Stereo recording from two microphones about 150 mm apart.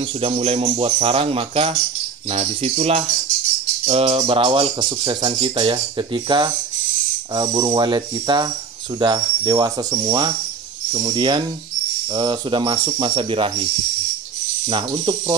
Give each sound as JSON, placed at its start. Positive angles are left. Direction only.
{"t": 0.2, "sound": "speech", "side_deg": -40}
{"t": 14.7, "sound": "speech", "side_deg": -30}